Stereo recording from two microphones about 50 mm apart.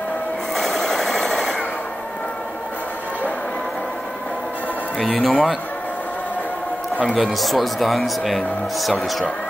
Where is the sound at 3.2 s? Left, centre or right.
Left.